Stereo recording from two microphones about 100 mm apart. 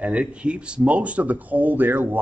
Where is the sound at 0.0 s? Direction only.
15° right (ahead or behind).